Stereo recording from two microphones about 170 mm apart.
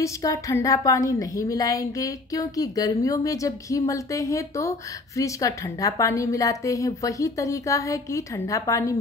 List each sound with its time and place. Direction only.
0.0 s a woman's voice: 20° left (ahead or behind)